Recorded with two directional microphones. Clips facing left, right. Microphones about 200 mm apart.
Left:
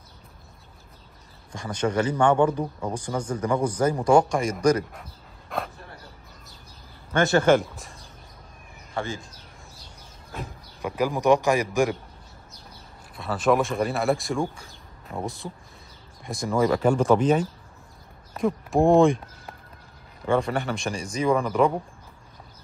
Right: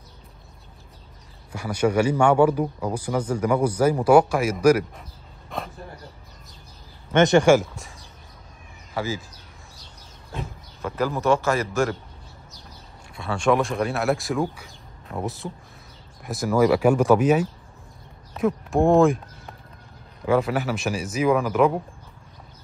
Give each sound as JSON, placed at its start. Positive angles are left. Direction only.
{"t": 1.5, "sound": "speech", "side_deg": -10}
{"t": 5.5, "sound": "a sound", "side_deg": 0}
{"t": 7.1, "sound": "speech", "side_deg": -20}
{"t": 7.5, "sound": "speech", "side_deg": 0}
{"t": 10.4, "sound": "speech", "side_deg": 15}
{"t": 13.1, "sound": "speech", "side_deg": 0}